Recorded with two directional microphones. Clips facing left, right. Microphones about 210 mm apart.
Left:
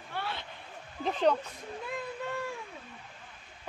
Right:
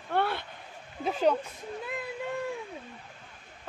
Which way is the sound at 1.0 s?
5° right (ahead or behind).